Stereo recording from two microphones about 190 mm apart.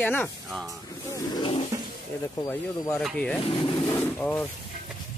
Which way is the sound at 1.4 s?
25° left (ahead or behind).